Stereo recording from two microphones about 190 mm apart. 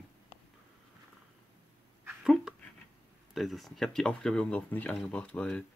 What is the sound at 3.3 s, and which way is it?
Speech, centre (ahead or behind).